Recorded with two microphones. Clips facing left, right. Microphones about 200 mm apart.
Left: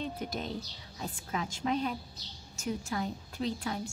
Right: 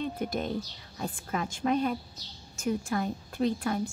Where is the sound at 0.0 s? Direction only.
55° right (ahead or behind).